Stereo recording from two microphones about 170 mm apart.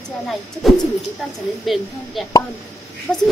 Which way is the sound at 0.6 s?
Centre (ahead or behind).